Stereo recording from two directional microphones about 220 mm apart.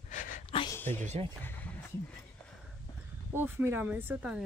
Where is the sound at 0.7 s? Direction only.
10° left (ahead or behind).